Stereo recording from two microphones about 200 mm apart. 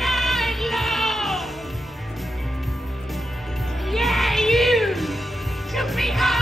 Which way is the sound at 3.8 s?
Centre (ahead or behind).